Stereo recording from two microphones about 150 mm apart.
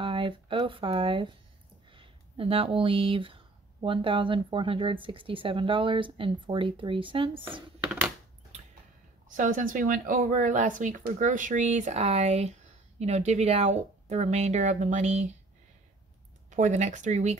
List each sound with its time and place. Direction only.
0.0 s speech: 35° right (ahead or behind)
7.8 s a sound: 10° right (ahead or behind)
9.3 s speech: 60° right (ahead or behind)
16.4 s speech: 55° right (ahead or behind)